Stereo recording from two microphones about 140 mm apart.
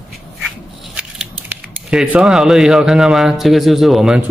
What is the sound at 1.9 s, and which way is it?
Speech, 5° right (ahead or behind).